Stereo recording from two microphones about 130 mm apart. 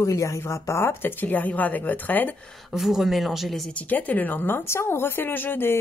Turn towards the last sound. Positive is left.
turn(degrees=15)  # may be behind; listen again after turning